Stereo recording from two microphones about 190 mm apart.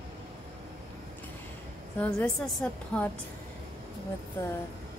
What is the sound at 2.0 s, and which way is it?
Speech, 5° left (ahead or behind).